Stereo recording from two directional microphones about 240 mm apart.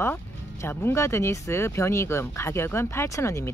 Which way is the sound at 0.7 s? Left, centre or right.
Centre.